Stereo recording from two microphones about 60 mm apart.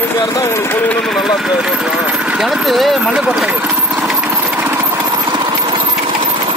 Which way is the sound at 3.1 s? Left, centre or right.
Centre.